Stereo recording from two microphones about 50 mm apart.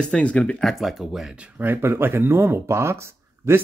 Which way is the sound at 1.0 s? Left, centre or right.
Centre.